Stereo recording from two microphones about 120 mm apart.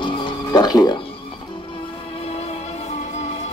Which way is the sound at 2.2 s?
60° left (ahead or behind).